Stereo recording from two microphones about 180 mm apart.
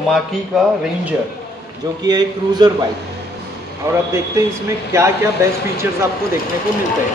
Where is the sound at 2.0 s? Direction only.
20° right (ahead or behind).